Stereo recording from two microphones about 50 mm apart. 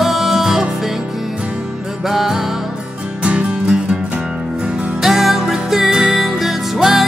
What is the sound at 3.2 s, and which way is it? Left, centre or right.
Music, right.